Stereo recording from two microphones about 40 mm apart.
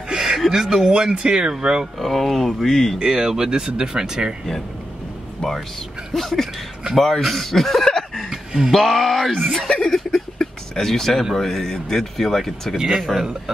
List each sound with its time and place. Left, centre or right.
0.1 s a sound: centre
0.5 s speech: centre
2.0 s speech: centre
3.0 s speech: centre
6.1 s speech: centre
8.3 s a sound: centre
8.7 s speech: centre
9.6 s speech: centre
12.7 s speech: centre